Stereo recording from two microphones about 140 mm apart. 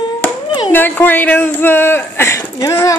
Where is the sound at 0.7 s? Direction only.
15° left (ahead or behind).